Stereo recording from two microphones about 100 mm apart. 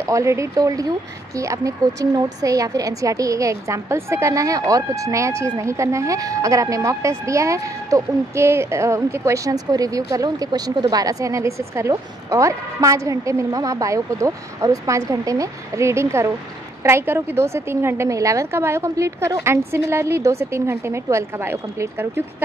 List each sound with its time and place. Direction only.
0.0 s a woman's voice: 30° right (ahead or behind)